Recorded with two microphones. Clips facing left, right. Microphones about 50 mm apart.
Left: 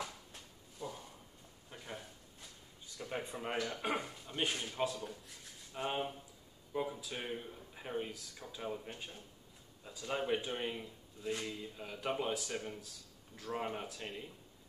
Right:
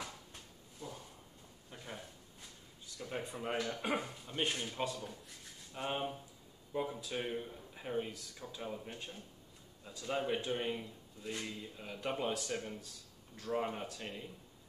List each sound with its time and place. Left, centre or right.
3.0 s speech: centre